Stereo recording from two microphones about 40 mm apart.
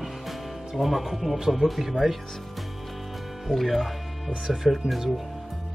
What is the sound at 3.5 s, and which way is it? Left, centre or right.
Speech, centre.